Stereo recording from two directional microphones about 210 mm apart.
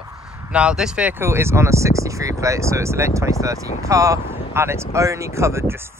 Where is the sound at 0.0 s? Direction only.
15° right (ahead or behind).